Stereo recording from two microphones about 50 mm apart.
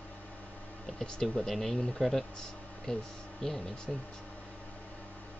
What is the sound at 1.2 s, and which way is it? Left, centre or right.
Speech, centre.